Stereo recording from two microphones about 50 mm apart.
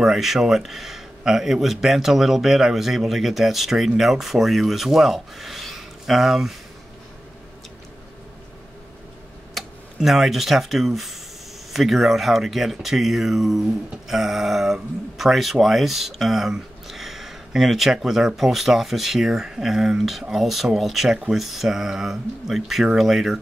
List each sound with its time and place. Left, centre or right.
0.0 s speech: centre
9.6 s tick-tock: centre
9.9 s speech: centre